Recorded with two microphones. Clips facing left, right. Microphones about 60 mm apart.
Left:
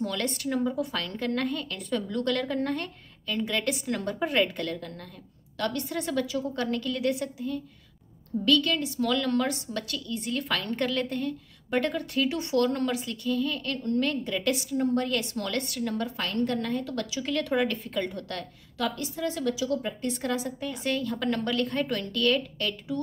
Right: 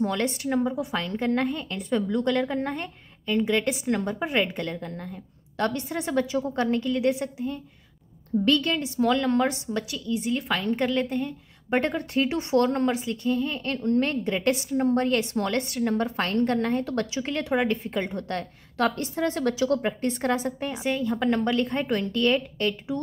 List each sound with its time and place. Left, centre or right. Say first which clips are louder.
0.0 s a woman's voice: right 4 dB; right
11.7 s a woman's voice: right 3 dB; right
18.4 s a woman's voice: right 6 dB; right
20.7 s a woman's voice: right 2 dB; centre